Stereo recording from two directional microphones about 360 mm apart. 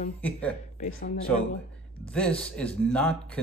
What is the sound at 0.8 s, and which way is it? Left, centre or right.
Speech, left.